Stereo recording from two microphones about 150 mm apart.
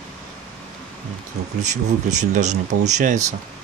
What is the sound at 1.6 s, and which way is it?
Speech, 50° right (ahead or behind).